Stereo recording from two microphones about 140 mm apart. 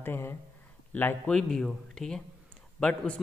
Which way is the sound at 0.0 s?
15° left (ahead or behind).